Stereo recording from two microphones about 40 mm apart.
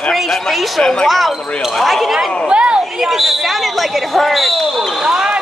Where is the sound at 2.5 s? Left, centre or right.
Right.